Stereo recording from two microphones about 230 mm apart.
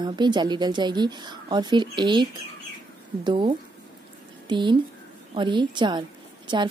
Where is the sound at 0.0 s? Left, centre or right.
Centre.